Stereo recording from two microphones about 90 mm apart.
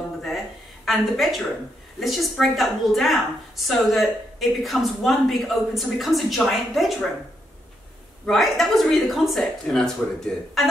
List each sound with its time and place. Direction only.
0.8 s a woman's voice: centre (ahead or behind)
8.3 s a woman's voice: centre (ahead or behind)